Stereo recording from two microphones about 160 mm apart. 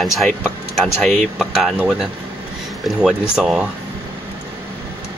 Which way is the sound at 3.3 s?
5° right (ahead or behind).